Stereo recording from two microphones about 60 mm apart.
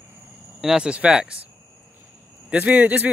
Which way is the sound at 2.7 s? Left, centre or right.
Right.